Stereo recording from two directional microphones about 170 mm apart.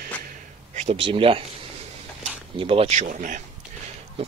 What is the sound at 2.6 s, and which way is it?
Speech, 35° right (ahead or behind).